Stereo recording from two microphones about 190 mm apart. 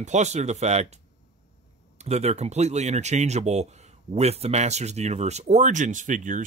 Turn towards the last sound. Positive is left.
turn(degrees=-40)  # may be behind; listen again after turning